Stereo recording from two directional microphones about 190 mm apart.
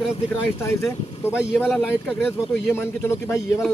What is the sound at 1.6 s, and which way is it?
A man's voice, centre (ahead or behind).